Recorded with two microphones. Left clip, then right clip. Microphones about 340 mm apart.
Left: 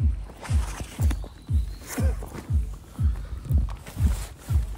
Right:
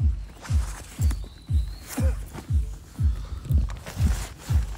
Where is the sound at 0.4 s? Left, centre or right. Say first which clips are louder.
Left 2 dB; left.